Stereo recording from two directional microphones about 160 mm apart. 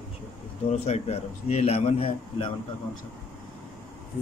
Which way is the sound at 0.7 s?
45° left (ahead or behind).